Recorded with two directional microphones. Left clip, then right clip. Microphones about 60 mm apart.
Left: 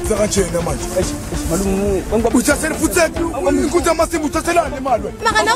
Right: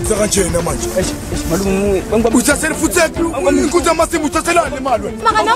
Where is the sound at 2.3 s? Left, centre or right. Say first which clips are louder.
Right 2 dB; centre.